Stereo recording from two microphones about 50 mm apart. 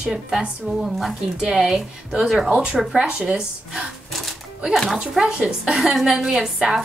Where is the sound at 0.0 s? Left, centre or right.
Centre.